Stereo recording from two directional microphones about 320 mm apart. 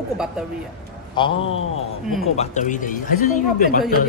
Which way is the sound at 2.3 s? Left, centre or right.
Left.